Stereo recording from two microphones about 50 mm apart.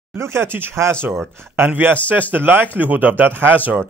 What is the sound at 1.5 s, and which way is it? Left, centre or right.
A man's voice, right.